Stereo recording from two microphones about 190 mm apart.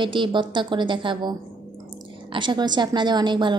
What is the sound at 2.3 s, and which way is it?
A woman's voice, 25° right (ahead or behind).